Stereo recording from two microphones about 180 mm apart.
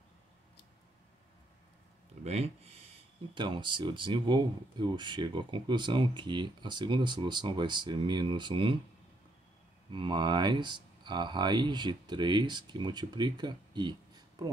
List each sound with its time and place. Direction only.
2.2 s speech: 35° right (ahead or behind)
9.9 s speech: 25° right (ahead or behind)